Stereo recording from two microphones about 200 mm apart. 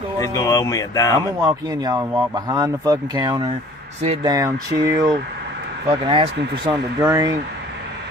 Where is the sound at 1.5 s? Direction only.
20° right (ahead or behind).